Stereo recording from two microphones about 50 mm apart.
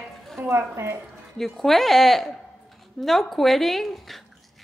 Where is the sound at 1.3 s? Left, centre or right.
Centre.